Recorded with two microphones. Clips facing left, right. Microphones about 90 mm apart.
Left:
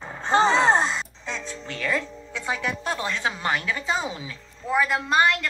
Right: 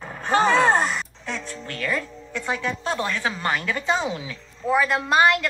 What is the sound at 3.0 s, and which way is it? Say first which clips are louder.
Speech: even; 25° left (ahead or behind).